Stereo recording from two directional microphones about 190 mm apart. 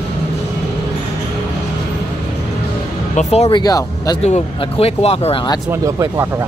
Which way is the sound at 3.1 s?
35° left (ahead or behind).